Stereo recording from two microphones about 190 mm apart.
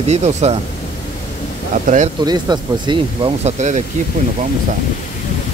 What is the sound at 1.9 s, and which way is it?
Speech, 45° right (ahead or behind).